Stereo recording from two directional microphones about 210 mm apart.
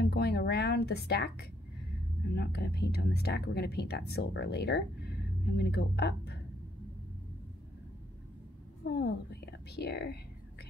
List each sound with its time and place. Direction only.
0.0 s speech: 50° left (ahead or behind)
8.8 s speech: 50° left (ahead or behind)